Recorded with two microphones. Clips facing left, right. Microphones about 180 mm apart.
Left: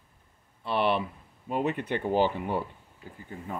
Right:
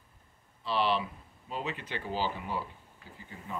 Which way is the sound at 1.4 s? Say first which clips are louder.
Left 9 dB; 55° left (ahead or behind).